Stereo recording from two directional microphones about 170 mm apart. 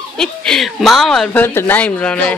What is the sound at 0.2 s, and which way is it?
Speech, 5° left (ahead or behind).